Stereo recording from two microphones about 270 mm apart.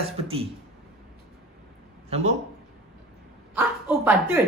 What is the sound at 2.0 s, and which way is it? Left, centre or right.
Speech, right.